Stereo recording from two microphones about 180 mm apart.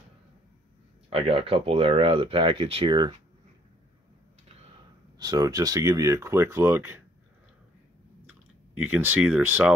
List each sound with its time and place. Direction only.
1.1 s speech: 30° right (ahead or behind)
5.2 s speech: 20° right (ahead or behind)
8.7 s speech: 10° right (ahead or behind)